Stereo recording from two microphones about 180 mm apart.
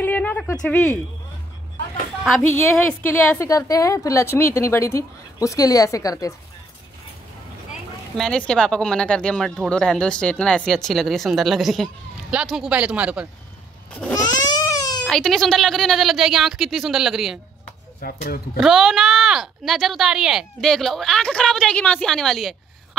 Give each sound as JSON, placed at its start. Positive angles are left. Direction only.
{"t": 0.0, "sound": "a sound", "side_deg": 10}
{"t": 2.5, "sound": "a woman's voice", "side_deg": 10}
{"t": 8.2, "sound": "speech", "side_deg": 5}
{"t": 14.1, "sound": "crying", "side_deg": 20}
{"t": 15.0, "sound": "speech", "side_deg": 0}
{"t": 18.0, "sound": "speech", "side_deg": 55}
{"t": 18.6, "sound": "speech", "side_deg": 0}